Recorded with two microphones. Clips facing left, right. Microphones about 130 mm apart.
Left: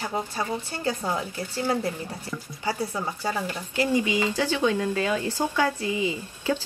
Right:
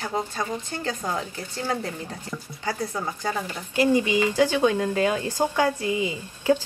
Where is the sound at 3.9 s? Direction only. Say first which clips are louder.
Right 3 dB; 15° right (ahead or behind).